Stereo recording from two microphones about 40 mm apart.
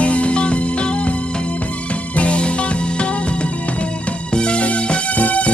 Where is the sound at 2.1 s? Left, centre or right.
Left.